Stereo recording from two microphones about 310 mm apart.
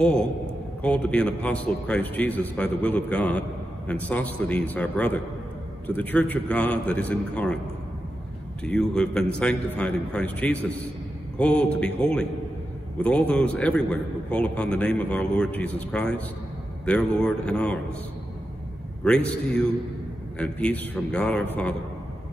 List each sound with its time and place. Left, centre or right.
0.8 s a man's voice: centre
8.6 s a man's voice: centre
19.0 s a man's voice: centre